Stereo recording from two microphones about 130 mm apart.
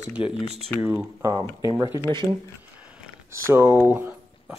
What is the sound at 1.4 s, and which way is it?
Speech, 25° right (ahead or behind).